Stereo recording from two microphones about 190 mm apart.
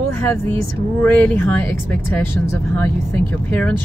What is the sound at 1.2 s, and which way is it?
Speech, 10° left (ahead or behind).